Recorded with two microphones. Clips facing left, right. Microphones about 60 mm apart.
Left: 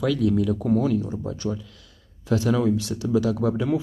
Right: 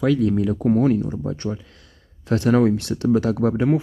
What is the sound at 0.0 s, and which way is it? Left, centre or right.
Speech, right.